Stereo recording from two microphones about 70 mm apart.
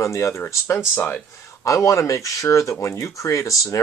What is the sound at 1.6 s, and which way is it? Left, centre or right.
Speech, left.